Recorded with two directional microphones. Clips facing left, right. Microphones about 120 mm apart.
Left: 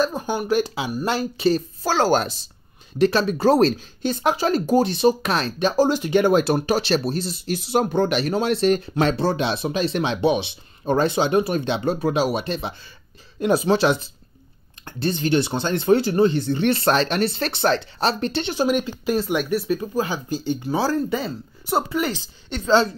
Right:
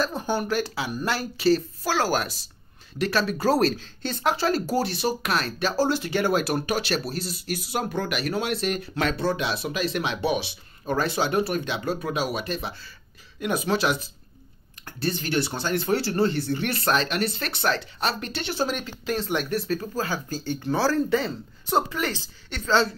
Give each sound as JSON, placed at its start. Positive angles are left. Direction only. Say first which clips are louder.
{"t": 0.0, "sound": "speech", "louder": "left 3 dB", "side_deg": 15}